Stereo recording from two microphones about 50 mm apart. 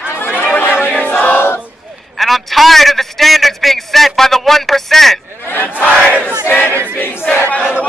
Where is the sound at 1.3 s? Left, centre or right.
Left.